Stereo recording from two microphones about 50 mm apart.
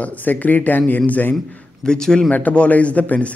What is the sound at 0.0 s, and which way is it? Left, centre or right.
Speech, left.